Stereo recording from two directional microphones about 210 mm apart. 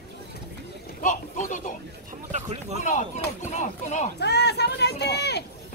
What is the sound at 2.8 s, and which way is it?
A man's voice, 35° left (ahead or behind).